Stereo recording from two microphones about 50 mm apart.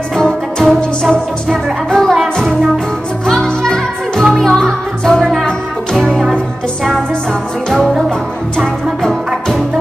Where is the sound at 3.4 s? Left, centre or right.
Centre.